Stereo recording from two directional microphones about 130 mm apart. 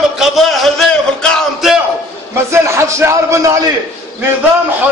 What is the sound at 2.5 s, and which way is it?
Music, 20° right (ahead or behind).